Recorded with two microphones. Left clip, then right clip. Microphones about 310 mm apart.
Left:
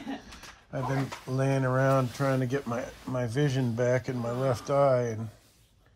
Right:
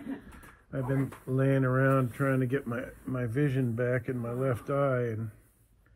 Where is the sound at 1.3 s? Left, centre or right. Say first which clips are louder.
Even; centre.